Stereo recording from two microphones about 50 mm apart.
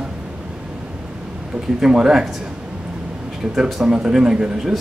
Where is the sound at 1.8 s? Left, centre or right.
Centre.